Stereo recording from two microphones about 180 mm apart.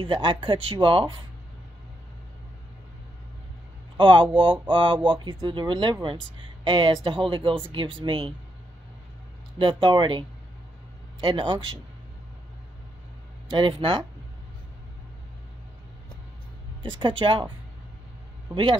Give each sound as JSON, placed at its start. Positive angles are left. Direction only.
{"t": 0.0, "sound": "speech", "side_deg": -25}
{"t": 4.0, "sound": "speech", "side_deg": -30}
{"t": 9.6, "sound": "speech", "side_deg": -25}
{"t": 13.5, "sound": "speech", "side_deg": -25}
{"t": 17.0, "sound": "speech", "side_deg": -30}
{"t": 18.5, "sound": "speech", "side_deg": -25}